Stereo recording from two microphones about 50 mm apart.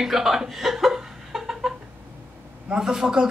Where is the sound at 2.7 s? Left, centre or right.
Centre.